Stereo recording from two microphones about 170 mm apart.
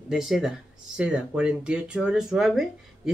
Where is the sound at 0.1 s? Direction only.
Centre (ahead or behind).